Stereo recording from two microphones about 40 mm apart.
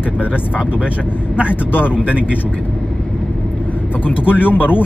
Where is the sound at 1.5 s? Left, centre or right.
Left.